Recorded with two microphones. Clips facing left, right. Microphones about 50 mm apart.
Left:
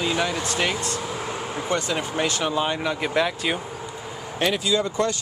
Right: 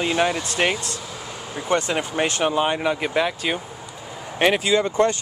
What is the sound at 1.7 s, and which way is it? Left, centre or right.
Speech, right.